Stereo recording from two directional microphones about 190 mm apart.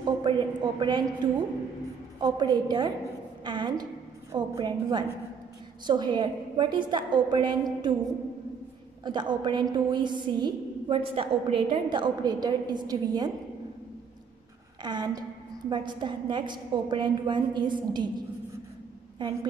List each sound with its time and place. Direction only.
0.0 s a woman's voice: 25° right (ahead or behind)
9.0 s a woman's voice: 25° right (ahead or behind)
14.8 s a woman's voice: 20° right (ahead or behind)